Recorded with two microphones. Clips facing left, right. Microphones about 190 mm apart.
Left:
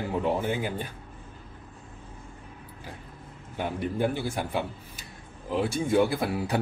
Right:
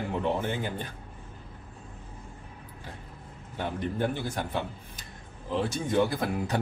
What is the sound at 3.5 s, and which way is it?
Speech, 10° left (ahead or behind).